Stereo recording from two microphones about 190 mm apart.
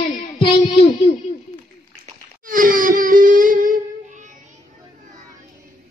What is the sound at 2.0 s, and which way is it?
Wail, 45° right (ahead or behind).